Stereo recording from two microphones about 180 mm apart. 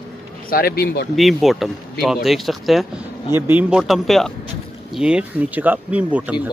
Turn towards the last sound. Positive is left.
turn(degrees=-5)  # may be behind; listen again after turning